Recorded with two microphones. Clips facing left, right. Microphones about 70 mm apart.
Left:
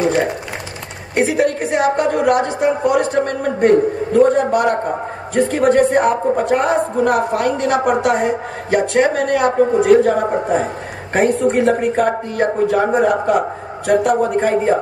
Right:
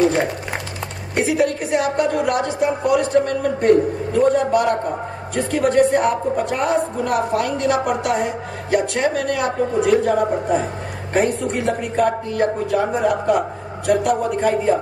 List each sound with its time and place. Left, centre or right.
1.1 s a woman's voice: left